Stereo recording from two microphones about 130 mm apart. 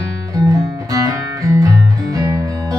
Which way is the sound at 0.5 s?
25° right (ahead or behind).